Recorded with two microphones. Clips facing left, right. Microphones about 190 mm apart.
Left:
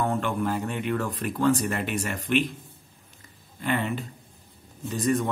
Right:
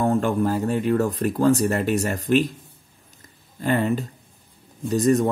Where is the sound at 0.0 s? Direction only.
40° right (ahead or behind).